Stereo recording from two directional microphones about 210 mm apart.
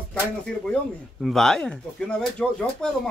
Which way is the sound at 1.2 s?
Centre (ahead or behind).